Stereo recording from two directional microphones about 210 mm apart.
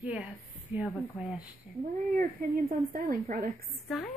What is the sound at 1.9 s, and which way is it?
A woman's voice, 35° right (ahead or behind).